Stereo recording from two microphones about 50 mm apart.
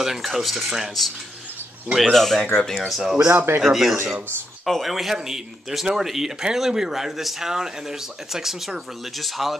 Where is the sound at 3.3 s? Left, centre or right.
Right.